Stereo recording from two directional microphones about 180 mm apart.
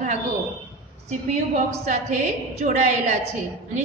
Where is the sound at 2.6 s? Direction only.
40° right (ahead or behind).